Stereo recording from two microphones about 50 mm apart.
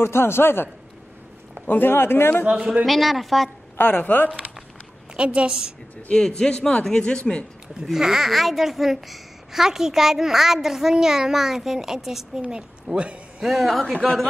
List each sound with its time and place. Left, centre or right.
0.0 s a man's voice: left
1.7 s a man's voice: left
2.5 s a woman's voice: right
2.8 s speech: centre
3.7 s a man's voice: left
5.1 s a woman's voice: right
6.1 s a man's voice: centre
7.6 s a child's voice: centre
12.4 s a woman's voice: right
13.4 s speech: centre